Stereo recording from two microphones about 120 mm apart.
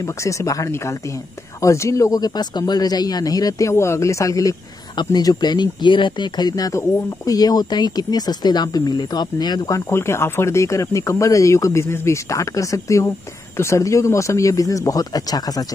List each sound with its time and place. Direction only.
0.0 s speech: 25° left (ahead or behind)